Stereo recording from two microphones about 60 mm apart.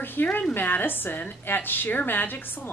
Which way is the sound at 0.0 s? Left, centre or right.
Left.